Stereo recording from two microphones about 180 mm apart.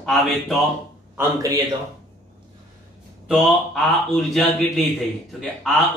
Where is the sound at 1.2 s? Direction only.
20° right (ahead or behind).